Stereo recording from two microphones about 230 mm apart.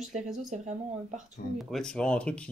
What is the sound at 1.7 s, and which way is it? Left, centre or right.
Speech, centre.